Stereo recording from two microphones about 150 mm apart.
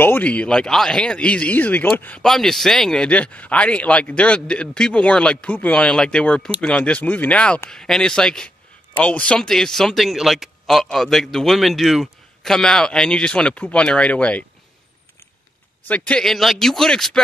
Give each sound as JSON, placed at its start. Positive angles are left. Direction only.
{"t": 0.0, "sound": "speech", "side_deg": 10}
{"t": 15.9, "sound": "speech", "side_deg": 5}